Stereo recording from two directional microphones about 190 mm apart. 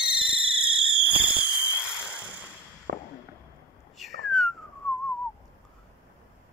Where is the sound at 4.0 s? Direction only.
Centre (ahead or behind).